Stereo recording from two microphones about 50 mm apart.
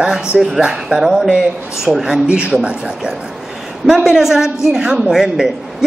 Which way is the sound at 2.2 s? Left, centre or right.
Right.